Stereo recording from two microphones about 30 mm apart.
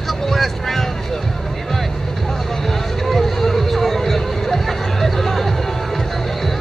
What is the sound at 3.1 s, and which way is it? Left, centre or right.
Music, centre.